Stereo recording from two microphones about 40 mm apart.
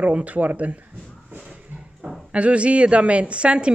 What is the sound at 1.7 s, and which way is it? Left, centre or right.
Dog, right.